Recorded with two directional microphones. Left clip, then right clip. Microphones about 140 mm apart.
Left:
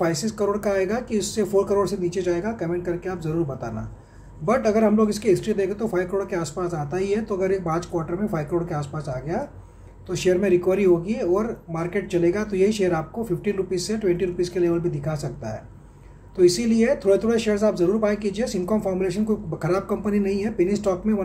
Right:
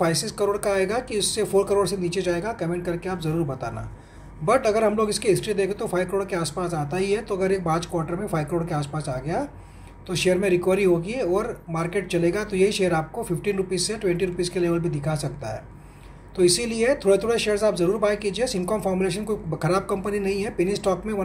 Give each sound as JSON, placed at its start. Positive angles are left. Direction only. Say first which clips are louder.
{"t": 0.0, "sound": "speech", "louder": "even", "side_deg": 15}